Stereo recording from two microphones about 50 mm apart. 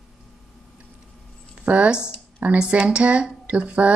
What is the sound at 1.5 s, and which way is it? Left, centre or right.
Speech, right.